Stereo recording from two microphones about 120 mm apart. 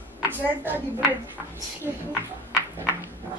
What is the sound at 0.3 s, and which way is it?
Speech, 15° right (ahead or behind).